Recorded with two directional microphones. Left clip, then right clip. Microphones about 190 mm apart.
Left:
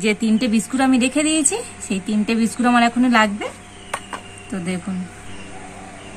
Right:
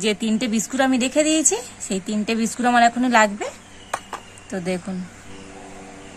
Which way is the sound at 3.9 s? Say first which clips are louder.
Left 1 dB; 45° right (ahead or behind).